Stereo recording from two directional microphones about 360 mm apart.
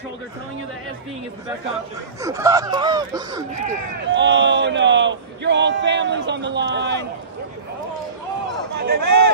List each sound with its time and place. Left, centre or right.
2.2 s speech: centre
4.1 s a man's voice: right
8.7 s speech: right